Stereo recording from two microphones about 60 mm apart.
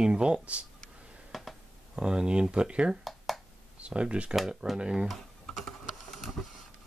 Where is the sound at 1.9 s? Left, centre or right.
Centre.